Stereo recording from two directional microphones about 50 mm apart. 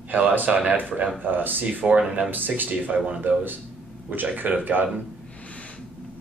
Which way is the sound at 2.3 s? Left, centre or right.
Right.